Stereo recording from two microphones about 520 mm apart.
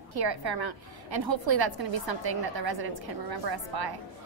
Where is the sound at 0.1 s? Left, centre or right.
Right.